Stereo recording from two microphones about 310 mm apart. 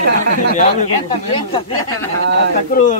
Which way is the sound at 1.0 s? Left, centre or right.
Centre.